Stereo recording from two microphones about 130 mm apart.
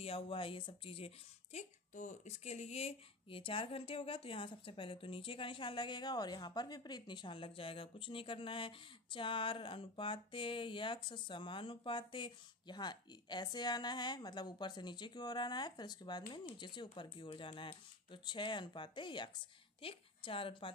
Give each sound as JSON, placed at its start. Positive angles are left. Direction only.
{"t": 0.0, "sound": "speech", "side_deg": 45}